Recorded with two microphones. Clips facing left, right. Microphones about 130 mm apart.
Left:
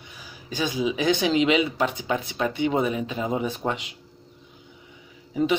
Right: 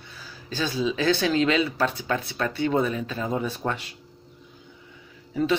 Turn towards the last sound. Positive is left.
turn(degrees=15)  # may be behind; listen again after turning